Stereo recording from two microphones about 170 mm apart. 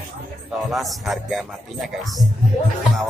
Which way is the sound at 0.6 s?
Centre (ahead or behind).